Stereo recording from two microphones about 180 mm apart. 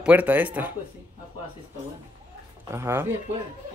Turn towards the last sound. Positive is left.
turn(degrees=-15)  # may be behind; listen again after turning